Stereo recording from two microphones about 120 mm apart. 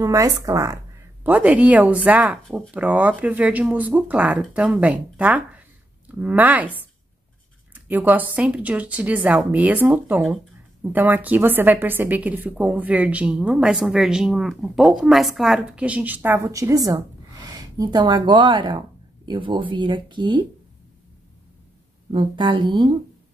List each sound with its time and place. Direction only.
0.0 s speech: 30° right (ahead or behind)
1.2 s a woman's voice: 15° right (ahead or behind); by 20.4 s 40° right (ahead or behind)
22.1 s speech: 40° right (ahead or behind)